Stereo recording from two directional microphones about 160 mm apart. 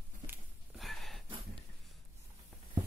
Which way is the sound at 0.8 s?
Centre (ahead or behind).